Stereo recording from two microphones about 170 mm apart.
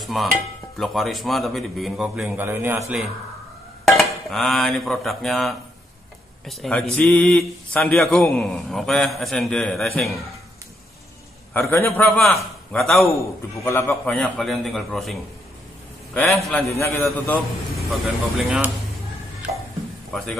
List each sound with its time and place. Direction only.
0.0 s a sound: centre (ahead or behind)
0.7 s speech: centre (ahead or behind)
3.8 s speech: centre (ahead or behind)
11.5 s a man's voice: 15° left (ahead or behind)
12.1 s speech: centre (ahead or behind)
13.7 s speech: 10° left (ahead or behind)
16.6 s a man's voice: 15° left (ahead or behind)
17.0 s speech: centre (ahead or behind)
20.1 s a man's voice: centre (ahead or behind)